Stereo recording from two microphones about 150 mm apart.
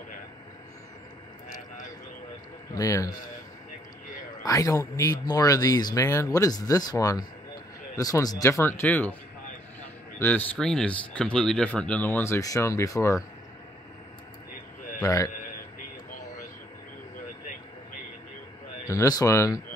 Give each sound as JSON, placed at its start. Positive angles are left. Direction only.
{"t": 2.7, "sound": "speech", "side_deg": 20}
{"t": 4.4, "sound": "speech", "side_deg": 20}
{"t": 10.1, "sound": "speech", "side_deg": 10}
{"t": 15.0, "sound": "speech", "side_deg": 25}
{"t": 18.9, "sound": "speech", "side_deg": 25}